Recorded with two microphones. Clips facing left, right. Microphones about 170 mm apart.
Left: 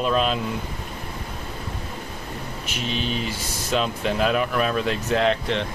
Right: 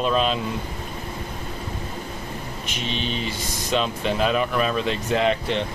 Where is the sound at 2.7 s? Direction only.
5° left (ahead or behind).